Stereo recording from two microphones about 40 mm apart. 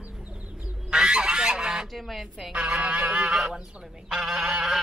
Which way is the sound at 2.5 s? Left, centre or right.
Right.